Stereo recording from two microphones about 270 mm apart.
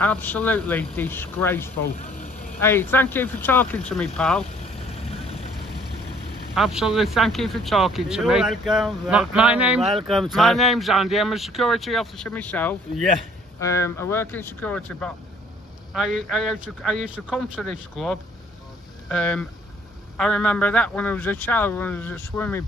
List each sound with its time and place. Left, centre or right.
0.0 s speech: centre
2.0 s speech: left
2.6 s speech: centre
6.5 s speech: centre